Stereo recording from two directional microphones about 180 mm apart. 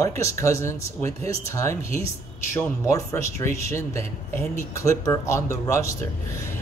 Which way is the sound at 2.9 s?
15° left (ahead or behind).